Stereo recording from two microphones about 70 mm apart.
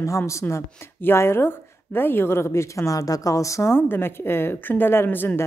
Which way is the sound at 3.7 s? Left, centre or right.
Left.